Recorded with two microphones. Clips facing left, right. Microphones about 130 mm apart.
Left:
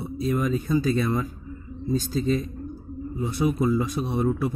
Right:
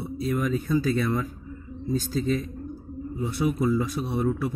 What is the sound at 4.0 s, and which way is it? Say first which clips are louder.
Speech: left 2 dB; 20° left (ahead or behind).